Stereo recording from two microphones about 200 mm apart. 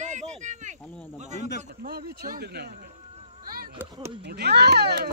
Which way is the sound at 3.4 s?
45° right (ahead or behind).